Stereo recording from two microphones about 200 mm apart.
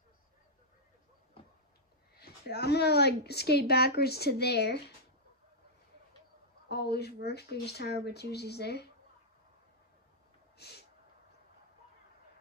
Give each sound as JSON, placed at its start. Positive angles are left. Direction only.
{"t": 2.1, "sound": "a woman's voice", "side_deg": 50}
{"t": 6.7, "sound": "speech", "side_deg": 55}
{"t": 10.6, "sound": "a sound", "side_deg": 55}